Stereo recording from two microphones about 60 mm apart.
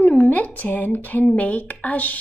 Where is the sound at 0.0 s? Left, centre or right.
Left.